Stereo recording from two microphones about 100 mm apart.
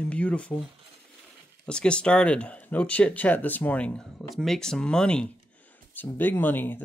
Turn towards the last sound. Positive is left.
turn(degrees=20)  # may be behind; listen again after turning